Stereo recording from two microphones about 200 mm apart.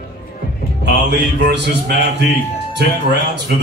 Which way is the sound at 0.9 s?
60° right (ahead or behind).